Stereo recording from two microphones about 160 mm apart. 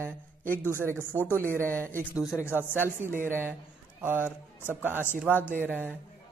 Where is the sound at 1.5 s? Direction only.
15° right (ahead or behind).